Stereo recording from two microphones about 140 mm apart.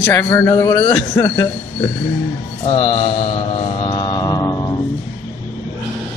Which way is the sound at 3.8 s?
30° left (ahead or behind).